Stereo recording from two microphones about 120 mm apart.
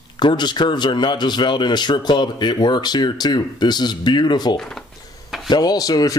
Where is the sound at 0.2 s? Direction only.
40° left (ahead or behind).